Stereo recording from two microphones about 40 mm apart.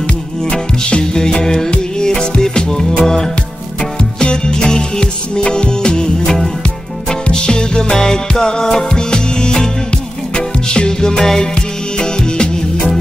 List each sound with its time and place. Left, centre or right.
0.8 s music: left
6.2 s music: centre
7.2 s music: centre